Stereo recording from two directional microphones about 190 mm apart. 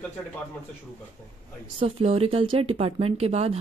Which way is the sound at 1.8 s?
30° right (ahead or behind).